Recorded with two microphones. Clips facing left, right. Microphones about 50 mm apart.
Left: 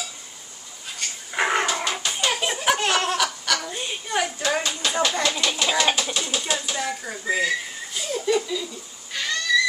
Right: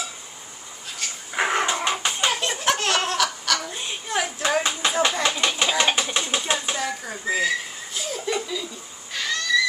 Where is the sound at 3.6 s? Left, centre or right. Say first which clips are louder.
Left 1 dB; centre.